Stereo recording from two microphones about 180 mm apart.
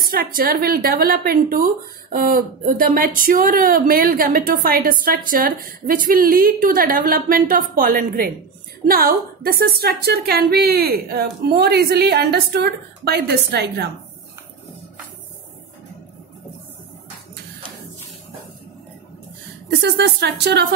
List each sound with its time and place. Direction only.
0.0 s a woman's voice: 55° right (ahead or behind)
19.7 s speech: 65° right (ahead or behind)